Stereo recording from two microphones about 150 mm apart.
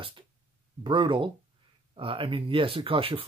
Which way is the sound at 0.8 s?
35° right (ahead or behind).